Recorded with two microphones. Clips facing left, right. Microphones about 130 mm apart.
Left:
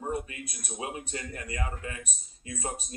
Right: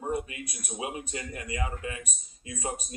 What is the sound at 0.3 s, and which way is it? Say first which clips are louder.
Speech: right 1 dB; 20° right (ahead or behind).